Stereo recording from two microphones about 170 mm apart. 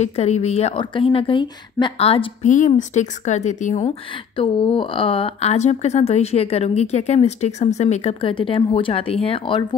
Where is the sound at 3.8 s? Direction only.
30° left (ahead or behind).